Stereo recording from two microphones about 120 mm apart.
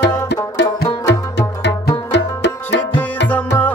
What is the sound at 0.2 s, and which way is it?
Music, 30° left (ahead or behind).